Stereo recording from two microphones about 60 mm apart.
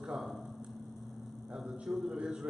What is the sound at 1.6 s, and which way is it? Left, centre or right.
Speech, centre.